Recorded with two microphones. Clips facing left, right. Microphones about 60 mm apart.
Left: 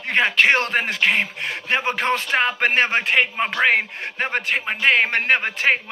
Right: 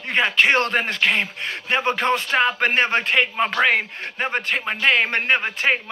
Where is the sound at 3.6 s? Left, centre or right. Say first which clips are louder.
Left 1 dB; left.